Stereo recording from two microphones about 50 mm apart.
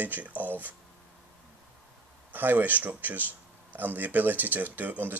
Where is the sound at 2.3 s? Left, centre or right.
Right.